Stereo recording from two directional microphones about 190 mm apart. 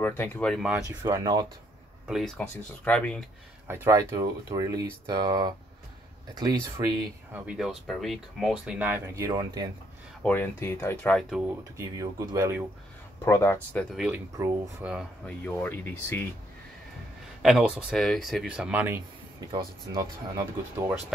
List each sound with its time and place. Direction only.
0.0 s speech: 10° left (ahead or behind)
1.0 s speech: 20° right (ahead or behind)
2.0 s speech: centre (ahead or behind)
3.6 s speech: 10° right (ahead or behind)
7.4 s speech: 5° right (ahead or behind); by 9.7 s 20° right (ahead or behind)
10.2 s speech: 10° left (ahead or behind)
11.7 s speech: 15° right (ahead or behind)
13.2 s speech: 15° left (ahead or behind)
13.9 s speech: 5° right (ahead or behind)
14.3 s speech: 15° right (ahead or behind)
14.9 s speech: 5° right (ahead or behind)
15.4 s speech: 10° left (ahead or behind)
17.4 s speech: 5° right (ahead or behind)